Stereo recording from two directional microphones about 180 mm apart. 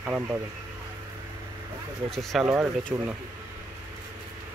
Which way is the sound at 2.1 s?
Centre (ahead or behind).